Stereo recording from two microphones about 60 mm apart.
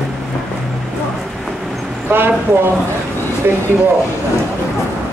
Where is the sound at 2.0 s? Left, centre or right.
Right.